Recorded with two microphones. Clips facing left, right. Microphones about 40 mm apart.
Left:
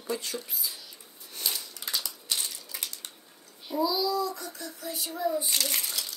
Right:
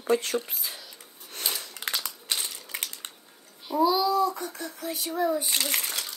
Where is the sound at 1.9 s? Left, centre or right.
Right.